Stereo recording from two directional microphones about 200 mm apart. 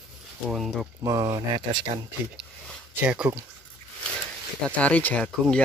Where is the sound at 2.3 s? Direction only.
5° right (ahead or behind).